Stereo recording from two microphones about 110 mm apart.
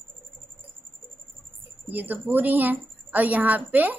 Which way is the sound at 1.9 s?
15° right (ahead or behind).